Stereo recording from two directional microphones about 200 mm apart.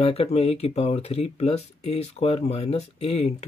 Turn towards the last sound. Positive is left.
turn(degrees=30)  # may be behind; listen again after turning